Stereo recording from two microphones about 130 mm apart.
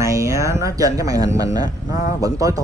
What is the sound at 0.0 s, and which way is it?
Speech, 25° right (ahead or behind).